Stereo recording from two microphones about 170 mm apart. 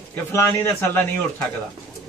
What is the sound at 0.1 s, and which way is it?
Speech, 15° left (ahead or behind).